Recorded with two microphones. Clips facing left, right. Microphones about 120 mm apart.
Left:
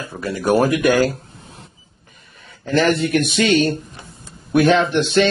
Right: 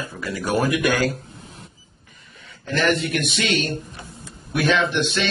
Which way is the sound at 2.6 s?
40° left (ahead or behind).